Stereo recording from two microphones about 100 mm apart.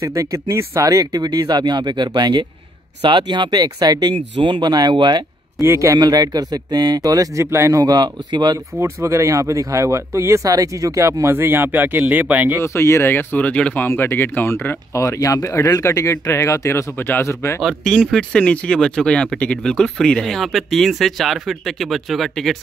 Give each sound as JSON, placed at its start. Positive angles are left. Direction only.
{"t": 0.0, "sound": "speech", "side_deg": -35}
{"t": 4.1, "sound": "speech", "side_deg": -55}
{"t": 5.6, "sound": "speech", "side_deg": -30}
{"t": 7.8, "sound": "speech", "side_deg": -45}
{"t": 8.5, "sound": "speech", "side_deg": -30}
{"t": 12.6, "sound": "speech", "side_deg": 25}
{"t": 14.9, "sound": "speech", "side_deg": 30}
{"t": 17.6, "sound": "speech", "side_deg": 5}